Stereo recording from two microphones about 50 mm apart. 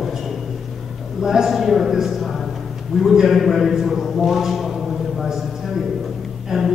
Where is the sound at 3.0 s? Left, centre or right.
Centre.